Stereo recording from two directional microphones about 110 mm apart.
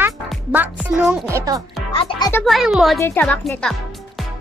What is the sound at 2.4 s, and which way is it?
Speech, centre (ahead or behind).